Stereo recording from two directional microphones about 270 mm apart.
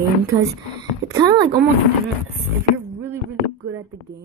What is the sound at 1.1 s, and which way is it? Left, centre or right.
Speech, centre.